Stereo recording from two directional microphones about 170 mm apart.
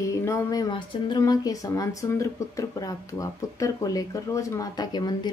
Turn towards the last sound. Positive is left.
turn(degrees=25)  # may be behind; listen again after turning